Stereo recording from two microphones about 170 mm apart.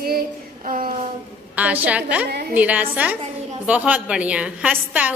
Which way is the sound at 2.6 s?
10° right (ahead or behind).